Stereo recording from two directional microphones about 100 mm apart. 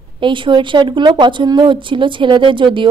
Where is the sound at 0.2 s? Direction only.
55° right (ahead or behind).